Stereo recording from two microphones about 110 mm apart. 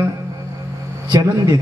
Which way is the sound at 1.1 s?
35° right (ahead or behind).